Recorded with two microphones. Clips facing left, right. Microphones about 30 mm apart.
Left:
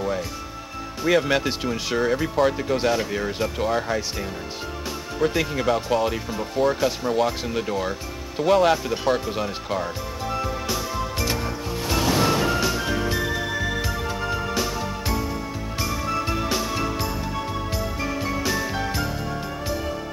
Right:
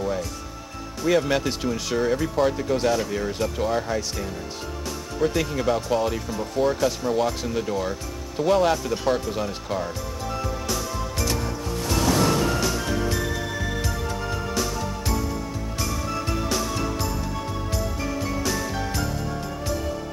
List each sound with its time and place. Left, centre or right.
1.0 s speech: centre
5.2 s speech: centre
10.3 s music: centre